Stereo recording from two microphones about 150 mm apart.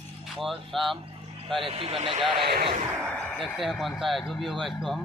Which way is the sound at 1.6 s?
40° right (ahead or behind).